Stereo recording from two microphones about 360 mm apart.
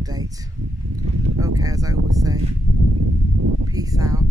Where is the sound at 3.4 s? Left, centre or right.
Right.